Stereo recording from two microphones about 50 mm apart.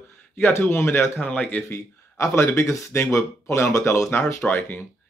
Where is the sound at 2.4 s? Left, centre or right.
Left.